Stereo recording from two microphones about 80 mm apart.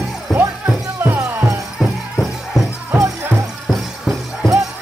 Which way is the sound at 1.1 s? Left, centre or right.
Right.